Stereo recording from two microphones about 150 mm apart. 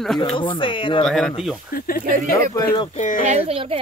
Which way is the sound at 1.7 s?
75° left (ahead or behind).